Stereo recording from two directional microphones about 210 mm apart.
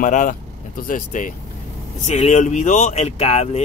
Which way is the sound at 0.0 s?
40° left (ahead or behind).